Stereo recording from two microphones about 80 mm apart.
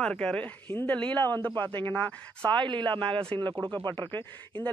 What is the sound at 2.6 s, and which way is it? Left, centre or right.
Speech, right.